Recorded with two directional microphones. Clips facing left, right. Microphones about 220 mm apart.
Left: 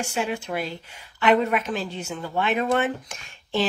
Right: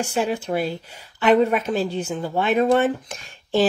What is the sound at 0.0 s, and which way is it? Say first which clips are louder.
Speech: right 4 dB; 35° right (ahead or behind).